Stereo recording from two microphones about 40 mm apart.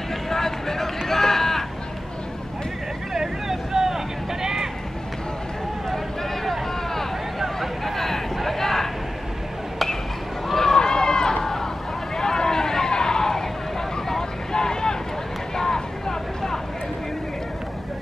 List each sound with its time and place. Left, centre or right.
0.3 s a sound: centre
3.1 s vehicle: centre
6.4 s vehicle: centre
7.3 s a sound: centre
10.5 s run: centre
12.2 s vehicle: centre